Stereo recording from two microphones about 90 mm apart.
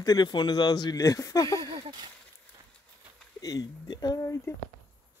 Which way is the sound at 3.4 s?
45° left (ahead or behind).